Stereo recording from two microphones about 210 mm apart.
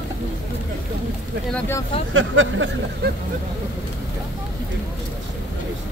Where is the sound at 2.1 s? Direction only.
70° right (ahead or behind).